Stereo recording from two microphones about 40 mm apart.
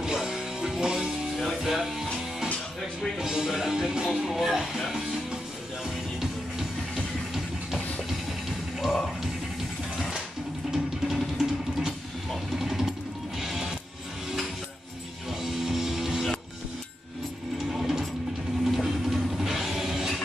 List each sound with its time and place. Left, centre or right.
0.0 s music: centre
3.2 s music: centre
10.7 s music: centre
12.5 s sewing machine: centre
13.4 s music: centre
15.4 s music: centre
17.6 s sewing machine: centre
18.6 s a sound: centre
19.4 s music: centre